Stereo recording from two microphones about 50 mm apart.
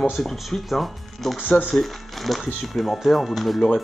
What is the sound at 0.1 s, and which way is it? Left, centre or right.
Speech, centre.